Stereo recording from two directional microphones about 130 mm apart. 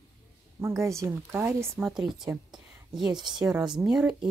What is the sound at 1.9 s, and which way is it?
Speech, 5° right (ahead or behind).